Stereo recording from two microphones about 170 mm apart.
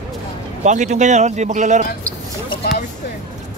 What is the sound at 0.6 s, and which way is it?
A man's voice, 45° right (ahead or behind).